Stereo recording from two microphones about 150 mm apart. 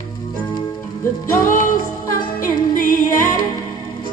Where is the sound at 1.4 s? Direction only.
65° left (ahead or behind).